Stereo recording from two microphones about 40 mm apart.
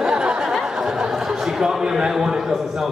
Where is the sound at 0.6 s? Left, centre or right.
Centre.